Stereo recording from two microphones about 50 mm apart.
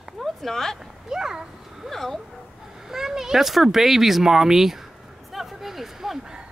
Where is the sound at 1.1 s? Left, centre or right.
Centre.